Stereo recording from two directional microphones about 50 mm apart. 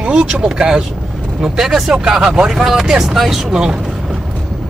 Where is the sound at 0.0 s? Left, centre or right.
Centre.